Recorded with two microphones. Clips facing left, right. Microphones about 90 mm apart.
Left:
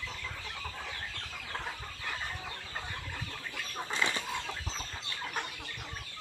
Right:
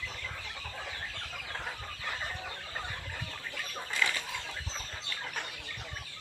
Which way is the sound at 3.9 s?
25° left (ahead or behind).